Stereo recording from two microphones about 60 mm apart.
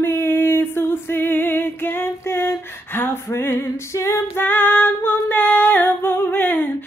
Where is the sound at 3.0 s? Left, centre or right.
Left.